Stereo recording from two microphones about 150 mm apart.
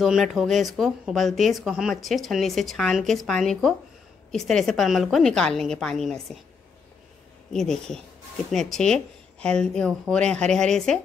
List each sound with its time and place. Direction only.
0.0 s speech: centre (ahead or behind)
7.5 s speech: 5° left (ahead or behind)